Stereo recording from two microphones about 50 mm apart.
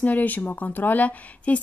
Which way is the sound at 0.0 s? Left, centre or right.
Left.